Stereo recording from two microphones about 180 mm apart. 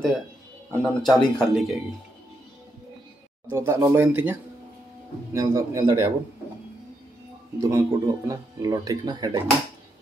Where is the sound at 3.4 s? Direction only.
15° right (ahead or behind).